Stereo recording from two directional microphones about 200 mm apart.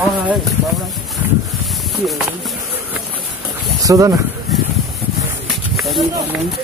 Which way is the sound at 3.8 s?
15° right (ahead or behind).